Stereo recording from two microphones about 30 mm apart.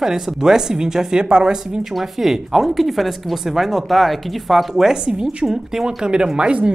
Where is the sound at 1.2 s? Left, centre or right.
Right.